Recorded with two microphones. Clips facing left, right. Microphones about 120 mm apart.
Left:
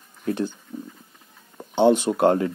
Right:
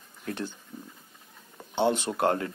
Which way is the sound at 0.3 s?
25° left (ahead or behind).